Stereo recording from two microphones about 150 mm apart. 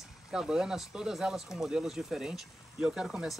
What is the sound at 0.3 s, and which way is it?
Speech, 5° right (ahead or behind).